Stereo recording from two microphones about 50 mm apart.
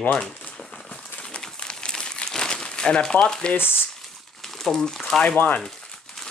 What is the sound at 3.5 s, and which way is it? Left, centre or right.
Speech, left.